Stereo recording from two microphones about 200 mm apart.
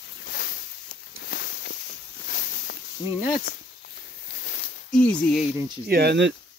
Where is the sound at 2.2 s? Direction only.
55° left (ahead or behind).